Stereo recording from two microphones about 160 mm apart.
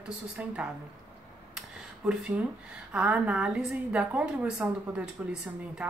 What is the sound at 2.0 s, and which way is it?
A woman's voice, 5° right (ahead or behind).